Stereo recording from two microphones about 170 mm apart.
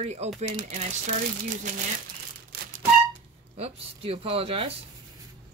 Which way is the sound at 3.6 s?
35° right (ahead or behind).